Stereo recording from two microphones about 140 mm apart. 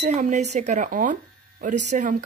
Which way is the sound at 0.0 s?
60° right (ahead or behind).